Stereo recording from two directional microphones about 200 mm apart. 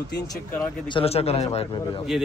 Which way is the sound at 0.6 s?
25° left (ahead or behind).